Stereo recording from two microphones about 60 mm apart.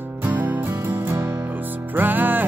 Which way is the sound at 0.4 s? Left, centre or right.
Right.